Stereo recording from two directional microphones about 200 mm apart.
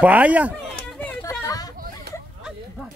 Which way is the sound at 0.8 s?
5° left (ahead or behind).